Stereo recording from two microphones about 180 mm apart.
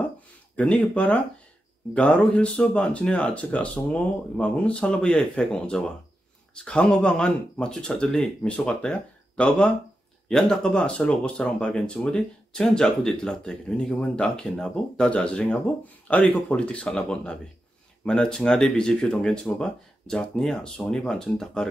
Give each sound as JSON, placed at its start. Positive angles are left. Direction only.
{"t": 0.6, "sound": "speech", "side_deg": 5}